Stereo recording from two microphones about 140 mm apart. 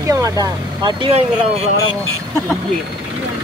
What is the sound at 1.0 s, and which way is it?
Speech, 45° right (ahead or behind).